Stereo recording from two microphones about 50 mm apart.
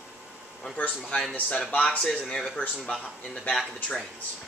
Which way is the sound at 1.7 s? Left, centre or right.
Left.